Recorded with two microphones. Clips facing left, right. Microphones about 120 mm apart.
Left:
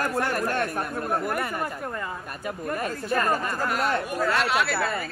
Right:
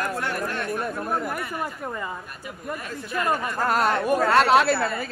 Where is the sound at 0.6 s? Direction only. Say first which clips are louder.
Even; 55° left (ahead or behind).